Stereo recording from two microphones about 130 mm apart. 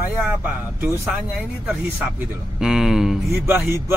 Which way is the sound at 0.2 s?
15° right (ahead or behind).